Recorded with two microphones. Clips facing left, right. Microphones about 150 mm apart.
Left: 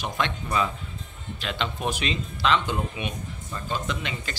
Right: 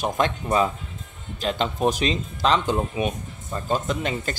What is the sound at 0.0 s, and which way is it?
Speech, 40° right (ahead or behind).